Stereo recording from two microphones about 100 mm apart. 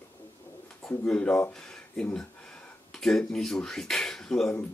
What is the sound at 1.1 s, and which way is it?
Speech, 10° left (ahead or behind).